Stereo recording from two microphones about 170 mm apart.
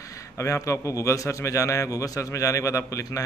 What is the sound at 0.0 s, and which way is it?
A man's voice, 20° left (ahead or behind).